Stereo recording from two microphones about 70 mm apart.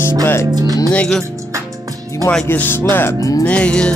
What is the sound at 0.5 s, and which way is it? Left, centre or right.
Speech, right.